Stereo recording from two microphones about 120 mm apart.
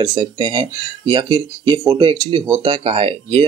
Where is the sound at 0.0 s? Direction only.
40° right (ahead or behind).